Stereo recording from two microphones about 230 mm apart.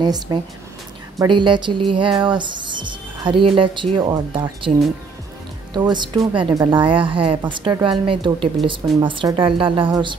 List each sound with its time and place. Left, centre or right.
0.0 s speech: centre